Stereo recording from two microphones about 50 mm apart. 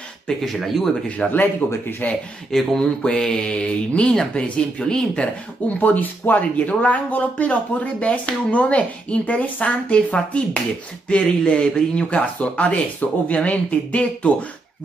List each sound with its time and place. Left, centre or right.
0.5 s speech: centre
1.0 s speech: left
1.7 s speech: left
2.5 s speech: centre
3.0 s speech: centre
5.2 s speech: left